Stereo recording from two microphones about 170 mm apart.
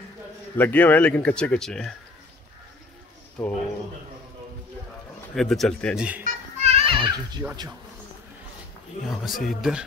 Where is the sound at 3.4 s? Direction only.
5° left (ahead or behind).